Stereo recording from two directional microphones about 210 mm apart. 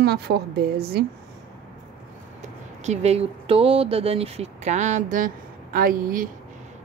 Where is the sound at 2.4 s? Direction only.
30° right (ahead or behind).